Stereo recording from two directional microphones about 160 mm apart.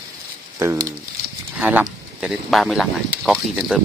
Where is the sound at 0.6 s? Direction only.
20° right (ahead or behind).